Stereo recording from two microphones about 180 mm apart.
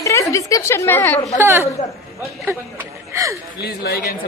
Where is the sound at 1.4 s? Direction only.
15° right (ahead or behind).